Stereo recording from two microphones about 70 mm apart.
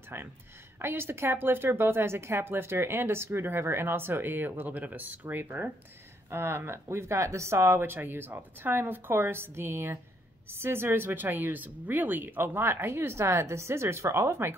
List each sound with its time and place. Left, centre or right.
0.1 s a woman's voice: right